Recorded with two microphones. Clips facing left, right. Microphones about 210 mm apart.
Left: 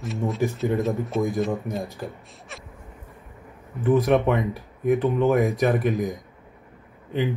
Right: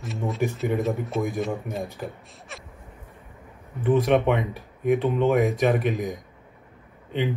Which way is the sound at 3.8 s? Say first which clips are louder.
Left 1 dB; centre (ahead or behind).